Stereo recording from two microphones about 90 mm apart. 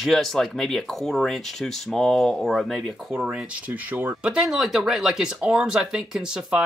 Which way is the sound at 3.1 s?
10° right (ahead or behind).